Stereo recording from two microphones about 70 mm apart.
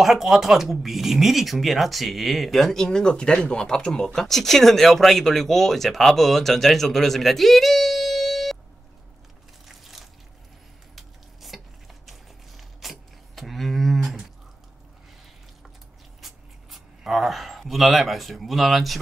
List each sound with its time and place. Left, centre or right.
0.0 s speech: centre
9.7 s a sound: centre
16.2 s speech: centre